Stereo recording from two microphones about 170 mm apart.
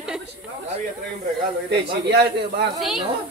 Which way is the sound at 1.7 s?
80° right.